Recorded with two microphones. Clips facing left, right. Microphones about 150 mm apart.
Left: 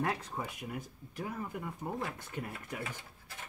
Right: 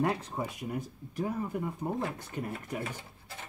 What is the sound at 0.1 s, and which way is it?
Speech, 30° right (ahead or behind).